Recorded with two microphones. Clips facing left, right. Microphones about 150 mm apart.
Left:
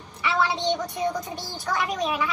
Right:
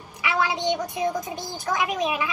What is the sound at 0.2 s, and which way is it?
A woman's voice, 15° right (ahead or behind).